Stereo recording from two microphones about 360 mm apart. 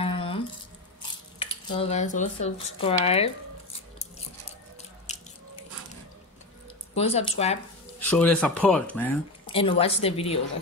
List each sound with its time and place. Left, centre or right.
0.0 s squish: centre
1.4 s speech: centre
5.1 s biting: centre
7.0 s speech: centre
8.0 s speech: centre
9.5 s speech: centre